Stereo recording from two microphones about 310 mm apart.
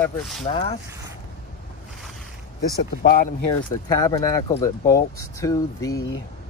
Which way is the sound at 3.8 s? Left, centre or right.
Centre.